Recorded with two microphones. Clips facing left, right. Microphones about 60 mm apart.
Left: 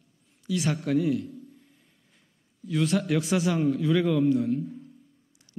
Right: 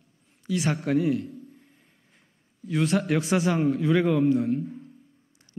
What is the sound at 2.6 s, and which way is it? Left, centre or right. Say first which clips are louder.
Speech: right 1 dB; right.